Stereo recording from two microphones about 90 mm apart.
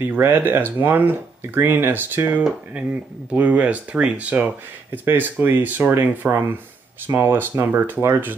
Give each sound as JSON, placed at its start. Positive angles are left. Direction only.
{"t": 0.2, "sound": "speech", "side_deg": -20}